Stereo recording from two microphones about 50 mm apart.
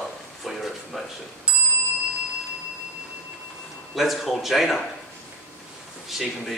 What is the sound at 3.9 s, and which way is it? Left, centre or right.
Speech, centre.